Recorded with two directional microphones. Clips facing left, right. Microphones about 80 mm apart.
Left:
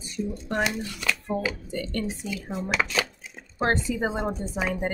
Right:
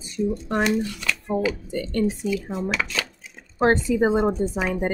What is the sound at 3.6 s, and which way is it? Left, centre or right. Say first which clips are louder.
Speech: right 6 dB; centre.